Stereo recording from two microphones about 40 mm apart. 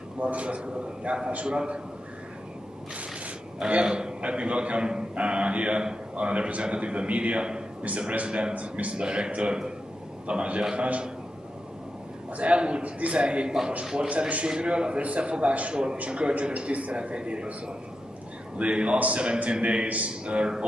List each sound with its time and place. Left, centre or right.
0.2 s a man's voice: right
3.8 s a man's voice: centre
8.9 s a man's voice: right
12.4 s a man's voice: right
18.6 s a man's voice: right